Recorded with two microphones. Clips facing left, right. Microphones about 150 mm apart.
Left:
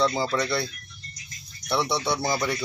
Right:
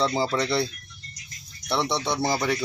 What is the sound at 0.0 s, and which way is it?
Speech, 30° right (ahead or behind).